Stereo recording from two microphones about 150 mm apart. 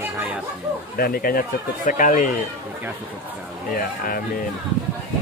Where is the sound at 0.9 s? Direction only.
75° left (ahead or behind).